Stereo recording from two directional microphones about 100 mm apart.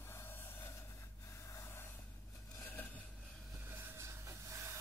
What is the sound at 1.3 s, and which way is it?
Snort, 30° left (ahead or behind).